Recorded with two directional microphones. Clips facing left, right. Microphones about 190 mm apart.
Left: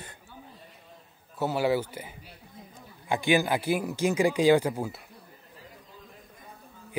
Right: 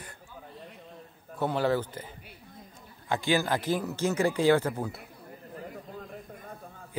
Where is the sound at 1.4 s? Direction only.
5° left (ahead or behind).